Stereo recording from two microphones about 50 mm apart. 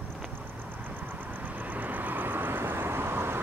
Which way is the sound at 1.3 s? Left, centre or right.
Right.